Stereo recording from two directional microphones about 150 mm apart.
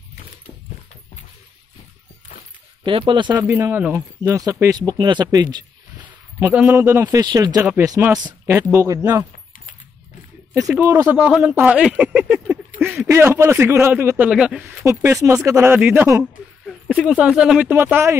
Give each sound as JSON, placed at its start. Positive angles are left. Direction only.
{"t": 2.8, "sound": "speech", "side_deg": -35}
{"t": 3.3, "sound": "speech", "side_deg": -15}
{"t": 6.0, "sound": "speech", "side_deg": -10}
{"t": 10.5, "sound": "speech", "side_deg": -20}
{"t": 11.1, "sound": "a man's voice", "side_deg": -10}
{"t": 12.3, "sound": "a sound", "side_deg": -15}
{"t": 12.8, "sound": "a sound", "side_deg": 0}
{"t": 13.1, "sound": "a man's voice", "side_deg": -15}
{"t": 14.9, "sound": "a man's voice", "side_deg": -20}
{"t": 16.6, "sound": "a man's voice", "side_deg": 0}